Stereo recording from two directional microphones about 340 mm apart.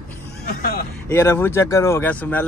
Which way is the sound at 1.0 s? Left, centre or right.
Centre.